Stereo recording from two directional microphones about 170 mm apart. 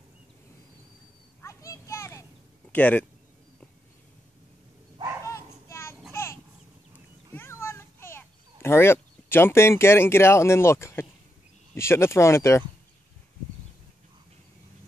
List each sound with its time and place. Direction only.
1.4 s children playing: 20° left (ahead or behind)
2.7 s speech: 10° left (ahead or behind)
5.2 s bow-wow: 15° left (ahead or behind)
7.3 s a sound: 15° left (ahead or behind)
11.7 s speech: 15° left (ahead or behind)